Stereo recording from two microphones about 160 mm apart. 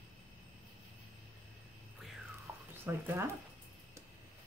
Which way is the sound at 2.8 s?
15° right (ahead or behind).